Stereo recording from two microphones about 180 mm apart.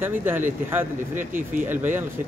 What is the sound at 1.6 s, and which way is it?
Speech, 10° right (ahead or behind).